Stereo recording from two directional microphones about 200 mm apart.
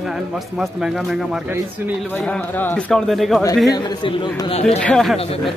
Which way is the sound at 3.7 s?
20° left (ahead or behind).